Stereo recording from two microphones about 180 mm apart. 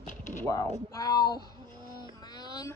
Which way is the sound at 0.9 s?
20° left (ahead or behind).